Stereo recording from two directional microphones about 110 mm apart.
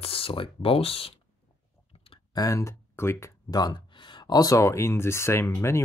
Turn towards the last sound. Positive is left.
turn(degrees=25)  # may be behind; listen again after turning